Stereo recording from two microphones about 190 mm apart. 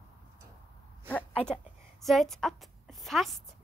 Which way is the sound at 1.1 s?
5° left (ahead or behind).